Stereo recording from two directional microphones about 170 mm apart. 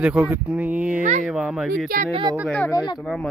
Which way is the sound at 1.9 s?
55° right (ahead or behind).